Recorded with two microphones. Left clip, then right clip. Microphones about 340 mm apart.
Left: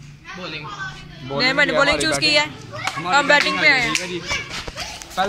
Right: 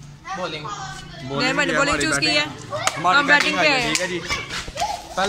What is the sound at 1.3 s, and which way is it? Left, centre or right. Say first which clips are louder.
Speech: left 3 dB; centre.